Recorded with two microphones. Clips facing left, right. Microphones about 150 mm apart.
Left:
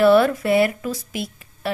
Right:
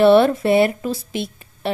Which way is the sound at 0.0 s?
25° right (ahead or behind).